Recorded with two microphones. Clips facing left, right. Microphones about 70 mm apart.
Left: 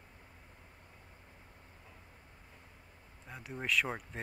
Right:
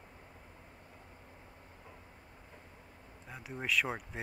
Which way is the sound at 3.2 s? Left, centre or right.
Centre.